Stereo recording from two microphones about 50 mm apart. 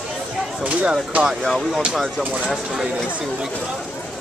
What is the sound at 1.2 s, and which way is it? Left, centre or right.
Speech, centre.